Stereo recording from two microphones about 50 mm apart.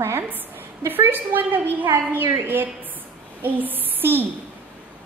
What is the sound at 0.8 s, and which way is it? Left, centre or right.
A woman's voice, right.